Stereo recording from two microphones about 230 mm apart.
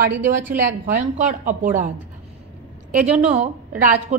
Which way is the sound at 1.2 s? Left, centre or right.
Right.